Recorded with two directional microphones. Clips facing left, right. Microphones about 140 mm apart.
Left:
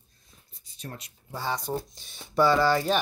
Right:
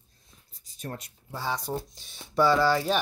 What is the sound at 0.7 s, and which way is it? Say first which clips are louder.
Speech: right 3 dB; 50° right (ahead or behind).